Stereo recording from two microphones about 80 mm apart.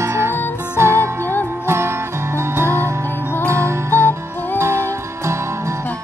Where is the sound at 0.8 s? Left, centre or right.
Right.